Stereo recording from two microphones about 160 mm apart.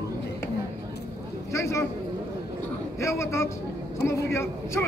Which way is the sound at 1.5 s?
20° left (ahead or behind).